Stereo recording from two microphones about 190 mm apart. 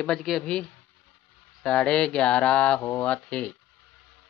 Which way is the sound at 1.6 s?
5° left (ahead or behind).